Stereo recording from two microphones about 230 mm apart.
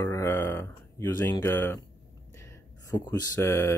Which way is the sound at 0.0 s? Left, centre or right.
Centre.